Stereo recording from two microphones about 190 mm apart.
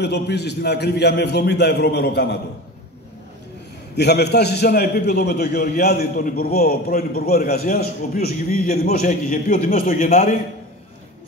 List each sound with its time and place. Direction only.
0.0 s a man's voice: 60° left (ahead or behind)
3.9 s a man's voice: 60° left (ahead or behind); by 10.3 s 40° left (ahead or behind)